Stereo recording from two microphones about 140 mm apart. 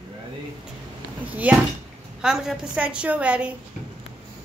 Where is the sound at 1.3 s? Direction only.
10° right (ahead or behind).